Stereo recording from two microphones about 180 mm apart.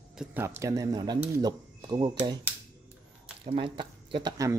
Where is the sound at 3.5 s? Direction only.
30° right (ahead or behind).